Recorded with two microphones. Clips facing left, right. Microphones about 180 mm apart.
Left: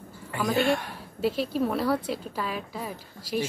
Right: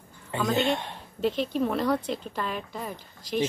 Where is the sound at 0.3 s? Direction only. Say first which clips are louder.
Left 1 dB; 20° right (ahead or behind).